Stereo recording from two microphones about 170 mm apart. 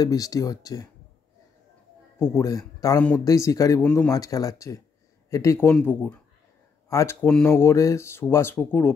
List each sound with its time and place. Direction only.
0.0 s speech: 20° left (ahead or behind)
2.1 s speech: 15° left (ahead or behind)